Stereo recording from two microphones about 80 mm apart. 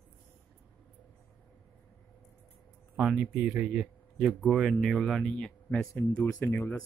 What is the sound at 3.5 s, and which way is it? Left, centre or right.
A man's voice, centre.